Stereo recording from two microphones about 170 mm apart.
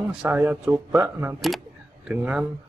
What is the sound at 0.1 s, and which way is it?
Speech, 10° right (ahead or behind).